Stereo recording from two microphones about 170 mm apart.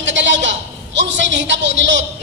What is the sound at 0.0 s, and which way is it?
A woman's voice, 90° right.